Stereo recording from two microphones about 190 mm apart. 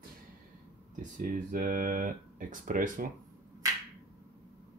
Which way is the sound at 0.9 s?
45° right (ahead or behind).